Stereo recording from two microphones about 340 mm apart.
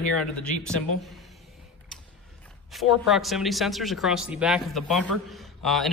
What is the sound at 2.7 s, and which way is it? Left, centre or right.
Speech, centre.